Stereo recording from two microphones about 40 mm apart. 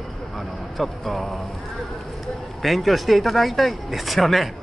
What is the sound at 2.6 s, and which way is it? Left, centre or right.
Speech, centre.